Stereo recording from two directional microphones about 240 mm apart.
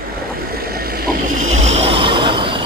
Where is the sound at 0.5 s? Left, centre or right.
Right.